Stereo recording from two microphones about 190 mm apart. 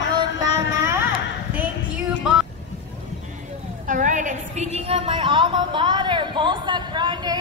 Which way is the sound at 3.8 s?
45° right (ahead or behind).